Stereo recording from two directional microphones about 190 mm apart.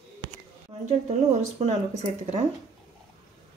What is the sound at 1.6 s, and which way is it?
Speech, 35° right (ahead or behind).